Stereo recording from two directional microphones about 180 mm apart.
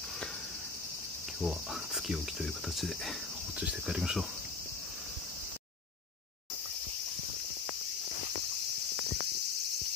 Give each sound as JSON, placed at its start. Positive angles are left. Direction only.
{"t": 1.4, "sound": "cricket", "side_deg": -5}